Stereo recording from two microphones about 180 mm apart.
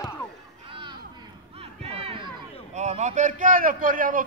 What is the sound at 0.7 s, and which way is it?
Music, 25° right (ahead or behind).